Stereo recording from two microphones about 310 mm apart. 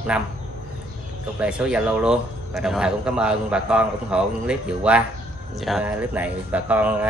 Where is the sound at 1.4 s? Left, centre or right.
Centre.